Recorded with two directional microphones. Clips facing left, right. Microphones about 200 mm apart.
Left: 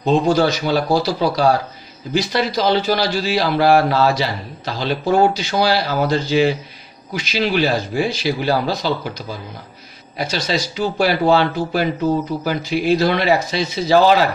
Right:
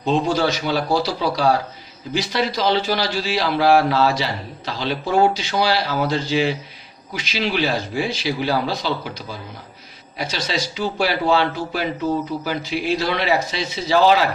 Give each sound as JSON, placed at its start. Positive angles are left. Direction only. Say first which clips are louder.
{"t": 0.0, "sound": "a man's voice", "louder": "left 4 dB", "side_deg": 45}
{"t": 10.1, "sound": "a man's voice", "louder": "left 4 dB", "side_deg": 45}